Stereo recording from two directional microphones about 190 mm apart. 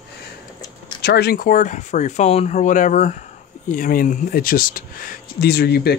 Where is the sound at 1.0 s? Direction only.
55° left (ahead or behind).